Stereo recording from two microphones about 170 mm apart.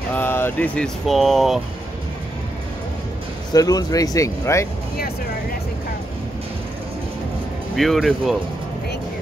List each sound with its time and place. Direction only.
0.1 s speech: 10° left (ahead or behind)
3.5 s speech: 20° left (ahead or behind)
7.7 s speech: centre (ahead or behind)